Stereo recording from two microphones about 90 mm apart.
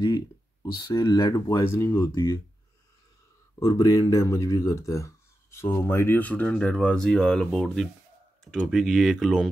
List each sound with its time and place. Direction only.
0.9 s speech: 45° left (ahead or behind)
1.5 s speech: 30° left (ahead or behind)
3.5 s speech: 35° left (ahead or behind); by 9.5 s 5° left (ahead or behind)